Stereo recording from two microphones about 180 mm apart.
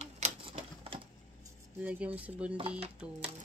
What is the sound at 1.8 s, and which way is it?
Speech, 10° right (ahead or behind).